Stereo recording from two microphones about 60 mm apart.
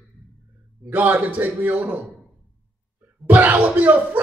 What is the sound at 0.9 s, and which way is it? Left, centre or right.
Speech, right.